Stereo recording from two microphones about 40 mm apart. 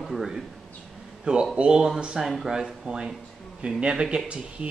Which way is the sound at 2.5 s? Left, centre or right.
Centre.